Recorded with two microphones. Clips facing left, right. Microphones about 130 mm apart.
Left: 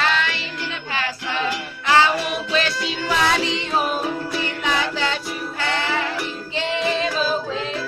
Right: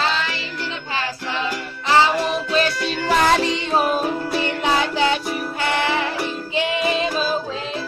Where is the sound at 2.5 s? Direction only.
45° right (ahead or behind).